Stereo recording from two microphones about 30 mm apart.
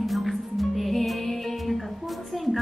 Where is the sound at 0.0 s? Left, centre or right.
Centre.